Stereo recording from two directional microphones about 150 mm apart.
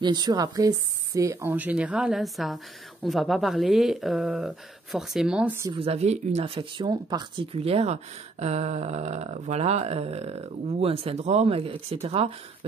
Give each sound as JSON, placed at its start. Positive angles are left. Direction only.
{"t": 0.0, "sound": "speech", "side_deg": -30}
{"t": 5.8, "sound": "speech", "side_deg": -45}